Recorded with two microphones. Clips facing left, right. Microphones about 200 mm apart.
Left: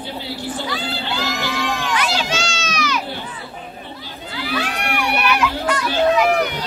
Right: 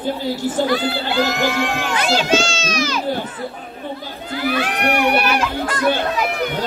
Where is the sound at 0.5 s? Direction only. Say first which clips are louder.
Right 7 dB; 50° right (ahead or behind).